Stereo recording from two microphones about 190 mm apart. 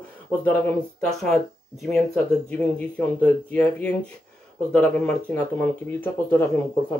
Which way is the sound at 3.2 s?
10° left (ahead or behind).